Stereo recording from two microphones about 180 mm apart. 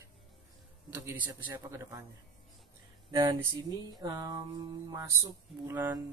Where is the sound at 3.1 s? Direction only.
15° right (ahead or behind).